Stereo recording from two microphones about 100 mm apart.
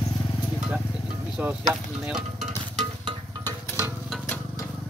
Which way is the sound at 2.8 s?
55° right (ahead or behind).